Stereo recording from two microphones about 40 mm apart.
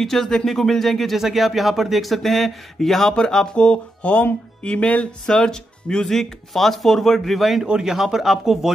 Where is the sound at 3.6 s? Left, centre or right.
Left.